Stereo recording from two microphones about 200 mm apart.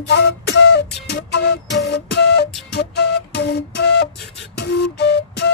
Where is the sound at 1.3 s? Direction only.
55° left (ahead or behind).